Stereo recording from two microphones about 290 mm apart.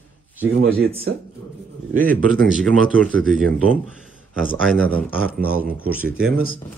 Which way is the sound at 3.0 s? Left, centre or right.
Centre.